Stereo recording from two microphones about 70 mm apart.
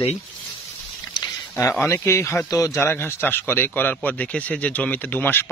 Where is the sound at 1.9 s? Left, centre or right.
Left.